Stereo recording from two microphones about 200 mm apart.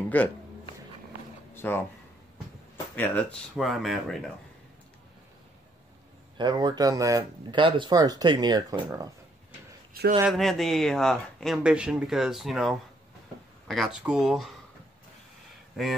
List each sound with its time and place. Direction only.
0.1 s speech: 10° left (ahead or behind)
1.5 s a sound: 10° left (ahead or behind)
3.0 s speech: 5° left (ahead or behind)
6.3 s speech: 20° right (ahead or behind)
10.2 s speech: centre (ahead or behind)
15.7 s speech: centre (ahead or behind)